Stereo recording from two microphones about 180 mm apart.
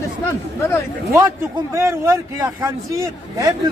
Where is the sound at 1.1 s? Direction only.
15° right (ahead or behind).